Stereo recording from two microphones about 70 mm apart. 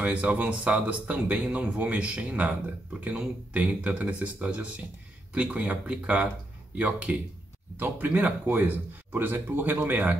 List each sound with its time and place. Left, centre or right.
0.0 s speech: centre
3.5 s speech: centre